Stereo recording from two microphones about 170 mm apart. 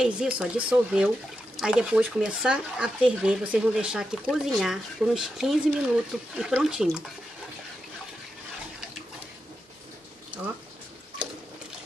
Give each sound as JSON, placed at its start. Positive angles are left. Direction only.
{"t": 0.0, "sound": "speech", "side_deg": -5}